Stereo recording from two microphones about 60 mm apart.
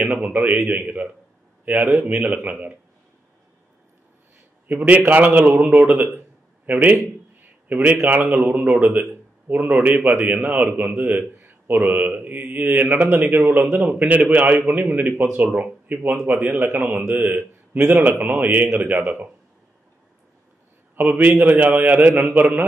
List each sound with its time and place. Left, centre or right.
0.0 s a man's voice: right
4.6 s a man's voice: right
6.1 s a sound: right
7.6 s a man's voice: right
20.9 s a man's voice: right